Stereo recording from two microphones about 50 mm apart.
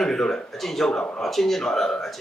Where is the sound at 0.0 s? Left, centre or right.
Centre.